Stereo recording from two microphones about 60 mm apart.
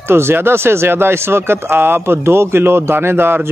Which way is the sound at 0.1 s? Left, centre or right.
Right.